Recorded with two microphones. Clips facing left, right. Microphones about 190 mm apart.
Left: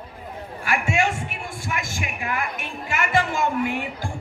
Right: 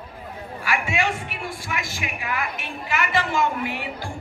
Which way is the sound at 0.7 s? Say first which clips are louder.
Left 2 dB; 50° left (ahead or behind).